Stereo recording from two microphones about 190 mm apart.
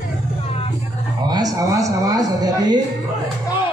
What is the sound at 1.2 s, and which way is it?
Speech, 20° right (ahead or behind).